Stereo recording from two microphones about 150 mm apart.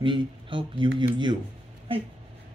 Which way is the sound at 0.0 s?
35° right (ahead or behind).